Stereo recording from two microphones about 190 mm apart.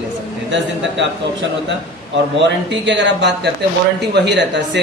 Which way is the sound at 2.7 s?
70° right (ahead or behind).